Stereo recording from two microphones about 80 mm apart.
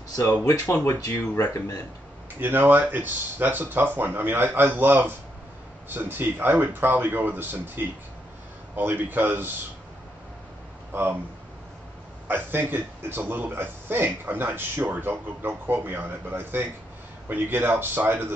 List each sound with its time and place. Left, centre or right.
0.2 s speech: left
2.4 s a man's voice: right
10.9 s speech: right
12.3 s a man's voice: right